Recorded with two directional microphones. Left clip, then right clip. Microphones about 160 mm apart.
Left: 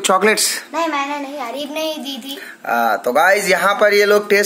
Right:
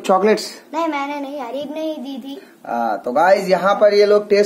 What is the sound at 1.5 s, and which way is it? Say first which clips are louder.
Speech: left 2 dB; 25° right (ahead or behind).